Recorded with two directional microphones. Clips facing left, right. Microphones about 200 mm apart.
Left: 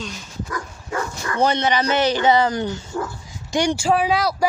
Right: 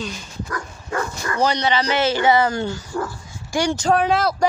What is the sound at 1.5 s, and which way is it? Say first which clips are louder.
Speech: left 1 dB; 20° left (ahead or behind).